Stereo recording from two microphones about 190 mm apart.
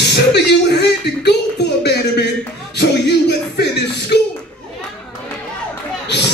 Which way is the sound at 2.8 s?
60° left (ahead or behind).